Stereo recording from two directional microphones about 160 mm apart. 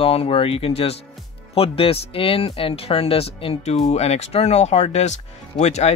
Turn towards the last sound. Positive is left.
turn(degrees=45)  # may be behind; listen again after turning